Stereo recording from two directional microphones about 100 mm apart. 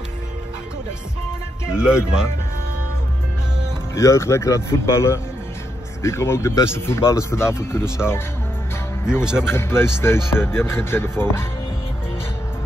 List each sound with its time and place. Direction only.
1.7 s speech: 10° right (ahead or behind)
3.9 s speech: 30° left (ahead or behind)
9.2 s speech: 10° right (ahead or behind)
9.5 s speech: 25° left (ahead or behind)